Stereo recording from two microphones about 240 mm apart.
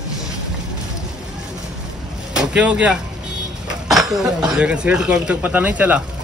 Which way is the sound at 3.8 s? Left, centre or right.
Centre.